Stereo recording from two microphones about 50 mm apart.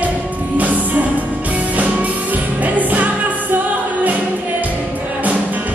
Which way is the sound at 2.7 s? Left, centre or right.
Right.